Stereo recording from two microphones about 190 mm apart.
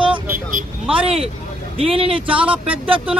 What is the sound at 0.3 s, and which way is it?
Vehicle, 45° right (ahead or behind).